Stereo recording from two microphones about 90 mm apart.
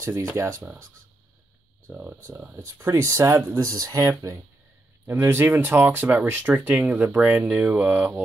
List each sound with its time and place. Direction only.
0.0 s speech: 25° right (ahead or behind)
1.9 s speech: 20° right (ahead or behind); by 4.4 s 35° right (ahead or behind)
5.0 s speech: 25° right (ahead or behind)